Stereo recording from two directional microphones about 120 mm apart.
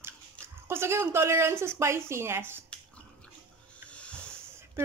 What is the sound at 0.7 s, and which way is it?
Speech, 20° right (ahead or behind).